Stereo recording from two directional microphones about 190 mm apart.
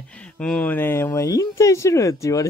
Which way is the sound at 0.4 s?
5° left (ahead or behind).